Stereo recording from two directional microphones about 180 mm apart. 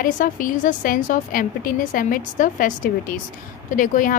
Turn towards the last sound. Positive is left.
turn(degrees=45)  # may be behind; listen again after turning